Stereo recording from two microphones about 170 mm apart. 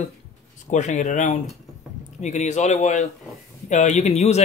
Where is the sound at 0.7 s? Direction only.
45° left (ahead or behind).